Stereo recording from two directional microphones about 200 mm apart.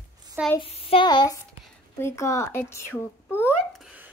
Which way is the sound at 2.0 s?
15° left (ahead or behind).